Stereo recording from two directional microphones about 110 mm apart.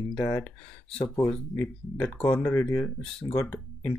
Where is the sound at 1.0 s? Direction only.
35° left (ahead or behind).